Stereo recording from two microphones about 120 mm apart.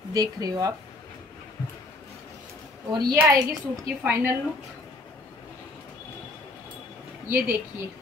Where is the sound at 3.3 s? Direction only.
30° right (ahead or behind).